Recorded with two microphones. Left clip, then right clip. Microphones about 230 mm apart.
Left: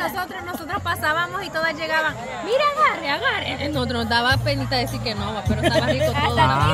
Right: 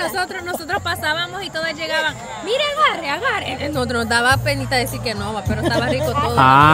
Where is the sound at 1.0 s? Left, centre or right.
Centre.